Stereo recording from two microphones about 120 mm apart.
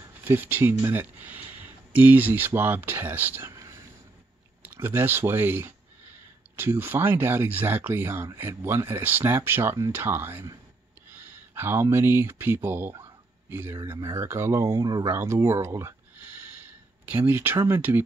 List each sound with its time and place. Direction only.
0.2 s speech: 15° right (ahead or behind)
17.1 s speech: 15° right (ahead or behind)